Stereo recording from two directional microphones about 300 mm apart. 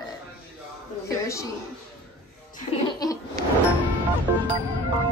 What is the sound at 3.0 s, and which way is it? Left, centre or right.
Laughter, centre.